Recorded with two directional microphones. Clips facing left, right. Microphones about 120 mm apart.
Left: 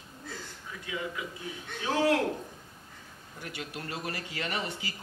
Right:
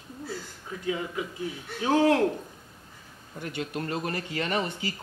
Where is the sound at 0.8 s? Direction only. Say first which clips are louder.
Right 6 dB; 35° right (ahead or behind).